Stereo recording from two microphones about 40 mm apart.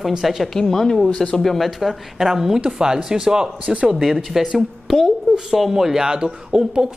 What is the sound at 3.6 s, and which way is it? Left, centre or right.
Speech, right.